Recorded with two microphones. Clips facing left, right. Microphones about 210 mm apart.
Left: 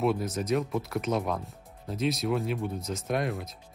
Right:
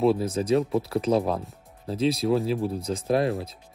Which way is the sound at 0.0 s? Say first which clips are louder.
Right 5 dB; 30° right (ahead or behind).